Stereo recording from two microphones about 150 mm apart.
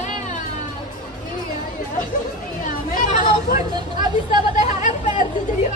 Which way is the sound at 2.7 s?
65° left (ahead or behind).